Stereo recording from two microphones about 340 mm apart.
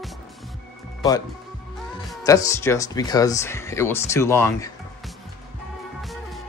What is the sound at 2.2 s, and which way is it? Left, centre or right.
Speech, centre.